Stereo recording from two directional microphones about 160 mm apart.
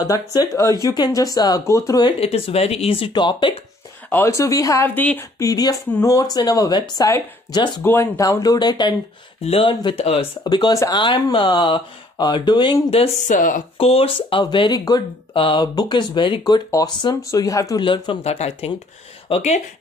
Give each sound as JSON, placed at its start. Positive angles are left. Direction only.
{"t": 0.0, "sound": "speech", "side_deg": 25}
{"t": 2.1, "sound": "speech", "side_deg": 35}
{"t": 4.1, "sound": "speech", "side_deg": 15}
{"t": 5.5, "sound": "speech", "side_deg": 20}
{"t": 7.8, "sound": "speech", "side_deg": 15}
{"t": 10.4, "sound": "speech", "side_deg": 25}
{"t": 12.9, "sound": "speech", "side_deg": 40}
{"t": 13.4, "sound": "speech", "side_deg": 55}
{"t": 13.7, "sound": "speech", "side_deg": 35}
{"t": 17.8, "sound": "speech", "side_deg": 30}